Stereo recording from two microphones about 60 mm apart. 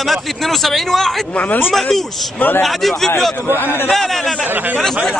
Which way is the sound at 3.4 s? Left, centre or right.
Left.